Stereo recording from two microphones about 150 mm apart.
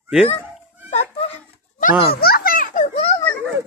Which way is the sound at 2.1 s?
90° left.